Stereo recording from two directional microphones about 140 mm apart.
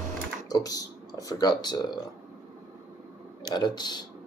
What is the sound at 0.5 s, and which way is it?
Speech, 25° left (ahead or behind).